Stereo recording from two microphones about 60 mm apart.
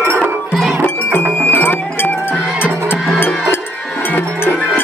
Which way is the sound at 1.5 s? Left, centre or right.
Left.